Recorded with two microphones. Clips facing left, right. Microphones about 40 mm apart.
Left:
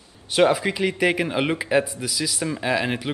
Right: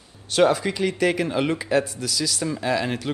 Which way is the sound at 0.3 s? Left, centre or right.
Centre.